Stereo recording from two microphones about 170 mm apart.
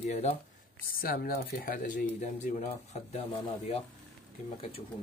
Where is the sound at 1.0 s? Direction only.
60° left (ahead or behind); by 3.2 s 45° left (ahead or behind).